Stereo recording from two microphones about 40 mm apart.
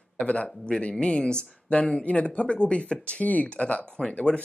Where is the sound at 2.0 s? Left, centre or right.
Left.